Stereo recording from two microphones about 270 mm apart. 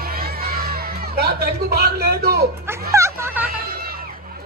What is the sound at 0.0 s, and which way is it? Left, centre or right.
Crowd, right.